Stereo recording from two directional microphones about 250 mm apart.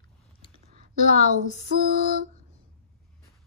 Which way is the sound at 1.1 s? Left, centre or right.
Left.